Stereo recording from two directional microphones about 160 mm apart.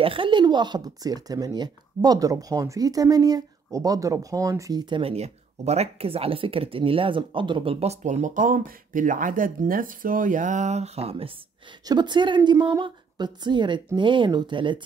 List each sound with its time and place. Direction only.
0.0 s speech: 35° right (ahead or behind)
11.8 s a woman's voice: 25° right (ahead or behind)